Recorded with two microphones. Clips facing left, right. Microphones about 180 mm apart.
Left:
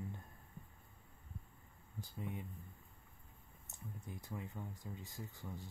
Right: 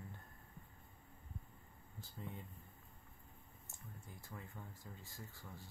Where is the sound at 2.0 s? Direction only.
15° left (ahead or behind).